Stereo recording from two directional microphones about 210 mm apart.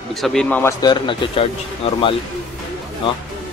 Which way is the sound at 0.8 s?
20° left (ahead or behind).